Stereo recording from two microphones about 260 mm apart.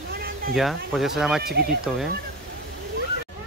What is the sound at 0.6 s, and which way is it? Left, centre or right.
Speech, centre.